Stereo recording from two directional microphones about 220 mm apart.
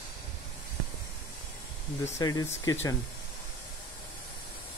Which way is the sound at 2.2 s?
15° left (ahead or behind).